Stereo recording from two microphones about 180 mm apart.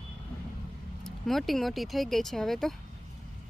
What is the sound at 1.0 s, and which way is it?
Speech, centre (ahead or behind).